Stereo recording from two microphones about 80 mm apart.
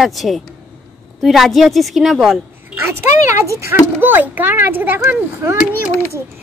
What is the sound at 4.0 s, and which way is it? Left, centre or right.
A child's voice, right.